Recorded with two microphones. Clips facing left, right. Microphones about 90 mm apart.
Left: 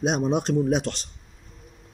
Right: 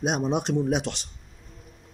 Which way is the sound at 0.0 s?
10° right (ahead or behind).